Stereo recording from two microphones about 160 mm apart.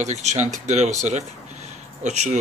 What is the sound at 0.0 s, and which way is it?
Speech, 45° right (ahead or behind).